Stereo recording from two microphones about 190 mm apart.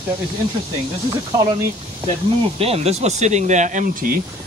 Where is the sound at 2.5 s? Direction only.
30° right (ahead or behind).